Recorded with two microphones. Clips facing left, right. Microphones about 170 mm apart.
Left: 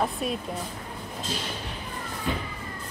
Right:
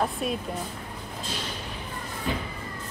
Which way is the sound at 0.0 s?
Centre (ahead or behind).